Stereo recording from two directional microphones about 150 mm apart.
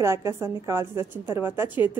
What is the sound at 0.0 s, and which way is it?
A woman's voice, 20° right (ahead or behind).